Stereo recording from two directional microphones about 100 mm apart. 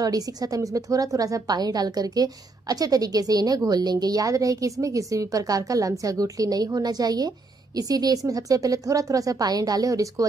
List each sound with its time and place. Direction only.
0.0 s a woman's voice: 40° right (ahead or behind)